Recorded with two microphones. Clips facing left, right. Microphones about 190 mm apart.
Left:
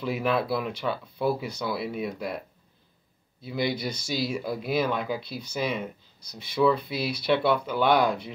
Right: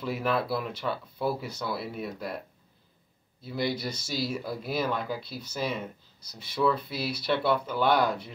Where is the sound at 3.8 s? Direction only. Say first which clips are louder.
Left 3 dB; 5° right (ahead or behind).